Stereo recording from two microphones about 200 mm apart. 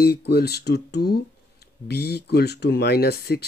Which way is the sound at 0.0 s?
55° left (ahead or behind).